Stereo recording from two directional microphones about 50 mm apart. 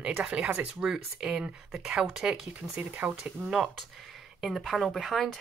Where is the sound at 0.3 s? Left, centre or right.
Right; by 3.7 s centre.